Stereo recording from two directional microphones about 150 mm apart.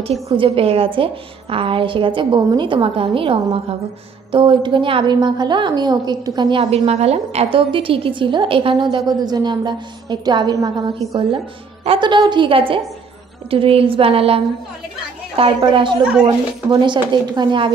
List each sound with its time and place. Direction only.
0.0 s a woman's voice: 40° right (ahead or behind)
11.8 s a woman's voice: 35° right (ahead or behind)